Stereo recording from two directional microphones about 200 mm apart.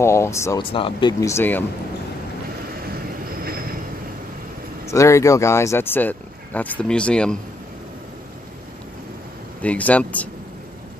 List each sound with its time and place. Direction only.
0.0 s speech: 15° left (ahead or behind)
0.6 s speech: 25° left (ahead or behind)
1.2 s speech: 10° left (ahead or behind)
4.9 s speech: 15° left (ahead or behind)
9.6 s speech: 5° left (ahead or behind)